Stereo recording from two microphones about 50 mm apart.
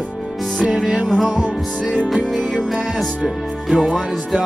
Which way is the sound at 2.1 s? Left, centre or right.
Centre.